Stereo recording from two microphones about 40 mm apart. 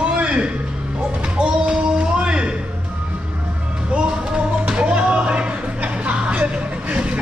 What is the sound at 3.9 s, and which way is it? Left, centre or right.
Music, right.